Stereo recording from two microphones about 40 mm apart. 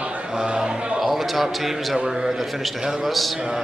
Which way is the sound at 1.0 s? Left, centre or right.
Centre.